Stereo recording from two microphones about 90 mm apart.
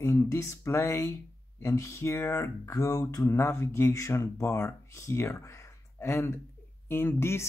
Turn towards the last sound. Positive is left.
turn(degrees=25)  # may be behind; listen again after turning